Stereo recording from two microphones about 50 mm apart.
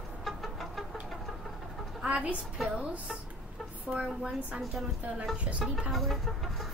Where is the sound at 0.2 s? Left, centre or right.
Centre.